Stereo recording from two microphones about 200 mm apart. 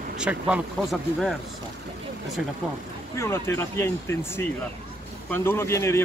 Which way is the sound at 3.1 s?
15° left (ahead or behind).